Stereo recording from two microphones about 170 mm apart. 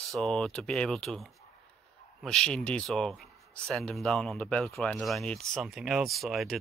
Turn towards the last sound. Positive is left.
turn(degrees=0)  # may be behind; listen again after turning